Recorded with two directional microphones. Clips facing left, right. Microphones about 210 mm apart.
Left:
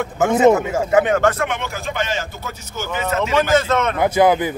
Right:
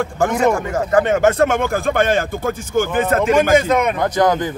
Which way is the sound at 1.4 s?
50° right (ahead or behind).